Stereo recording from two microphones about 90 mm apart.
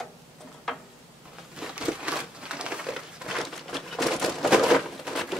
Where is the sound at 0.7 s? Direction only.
5° left (ahead or behind).